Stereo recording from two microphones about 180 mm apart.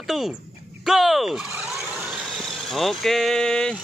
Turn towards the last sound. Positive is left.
turn(degrees=5)  # may be behind; listen again after turning